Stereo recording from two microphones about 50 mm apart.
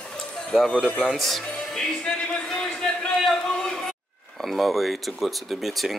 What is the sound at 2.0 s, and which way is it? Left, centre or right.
A man's voice, centre.